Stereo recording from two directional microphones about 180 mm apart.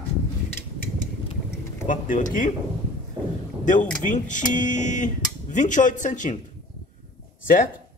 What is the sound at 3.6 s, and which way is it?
Speech, 45° left (ahead or behind).